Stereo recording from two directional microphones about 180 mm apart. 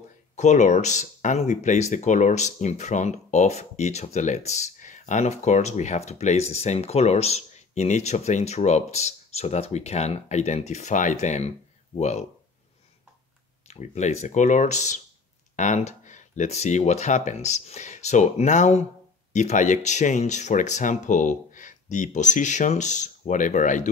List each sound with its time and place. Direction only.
0.4 s speech: 40° left (ahead or behind)
13.7 s speech: 40° left (ahead or behind)